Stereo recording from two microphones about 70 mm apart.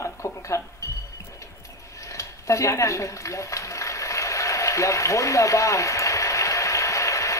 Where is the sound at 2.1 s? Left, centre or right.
Left.